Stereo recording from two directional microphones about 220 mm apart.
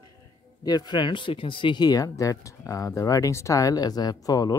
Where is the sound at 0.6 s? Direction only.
20° left (ahead or behind).